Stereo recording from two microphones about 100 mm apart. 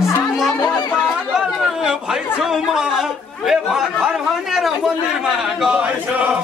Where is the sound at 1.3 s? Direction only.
5° right (ahead or behind).